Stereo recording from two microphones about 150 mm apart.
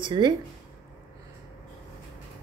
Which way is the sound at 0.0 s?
30° right (ahead or behind).